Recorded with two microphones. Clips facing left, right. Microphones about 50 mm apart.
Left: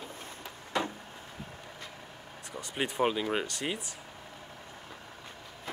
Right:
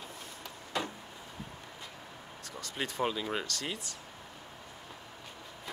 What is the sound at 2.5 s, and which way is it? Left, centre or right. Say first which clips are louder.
Speech: left 4 dB; left.